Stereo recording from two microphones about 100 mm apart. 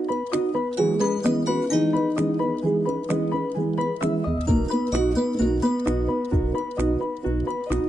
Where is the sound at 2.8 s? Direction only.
15° right (ahead or behind).